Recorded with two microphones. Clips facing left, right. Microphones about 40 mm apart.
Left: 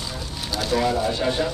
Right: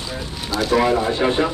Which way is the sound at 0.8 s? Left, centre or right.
Right.